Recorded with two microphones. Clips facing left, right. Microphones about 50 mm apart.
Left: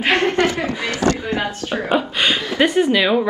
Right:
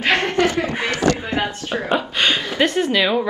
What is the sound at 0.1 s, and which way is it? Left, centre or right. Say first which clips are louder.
Chuckle: left 1 dB; left.